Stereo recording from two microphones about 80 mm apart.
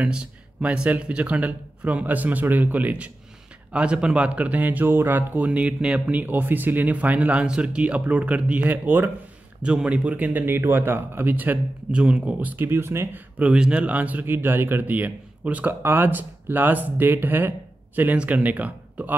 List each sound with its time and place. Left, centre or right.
0.0 s speech: centre
9.6 s speech: centre
11.9 s speech: centre; by 13.2 s right
13.4 s speech: centre